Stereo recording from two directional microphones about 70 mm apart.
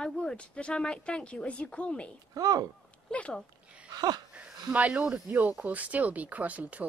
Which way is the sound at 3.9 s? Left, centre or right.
Right.